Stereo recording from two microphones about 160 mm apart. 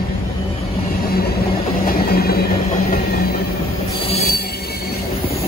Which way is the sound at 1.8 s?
75° left (ahead or behind).